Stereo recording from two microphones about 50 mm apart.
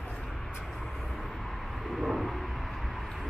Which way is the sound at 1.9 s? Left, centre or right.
Centre.